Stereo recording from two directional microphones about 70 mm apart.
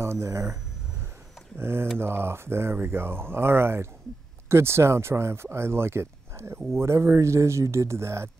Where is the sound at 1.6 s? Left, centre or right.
Right.